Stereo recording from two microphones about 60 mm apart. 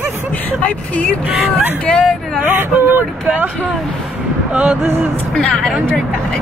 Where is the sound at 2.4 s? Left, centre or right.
Right.